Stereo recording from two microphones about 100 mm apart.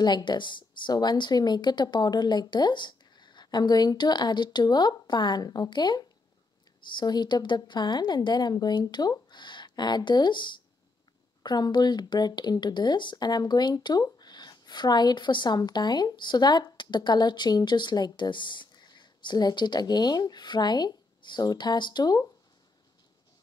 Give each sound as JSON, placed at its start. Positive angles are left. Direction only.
{"t": 0.0, "sound": "a woman's voice", "side_deg": 45}